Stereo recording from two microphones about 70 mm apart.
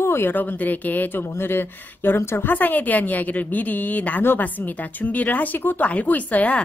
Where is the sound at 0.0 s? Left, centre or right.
Left.